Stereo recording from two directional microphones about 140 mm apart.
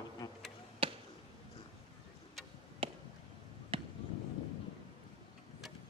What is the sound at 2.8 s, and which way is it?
Chop, 40° right (ahead or behind).